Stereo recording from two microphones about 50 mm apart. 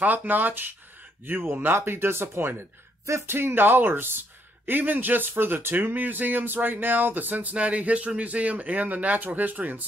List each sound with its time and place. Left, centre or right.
0.0 s speech: right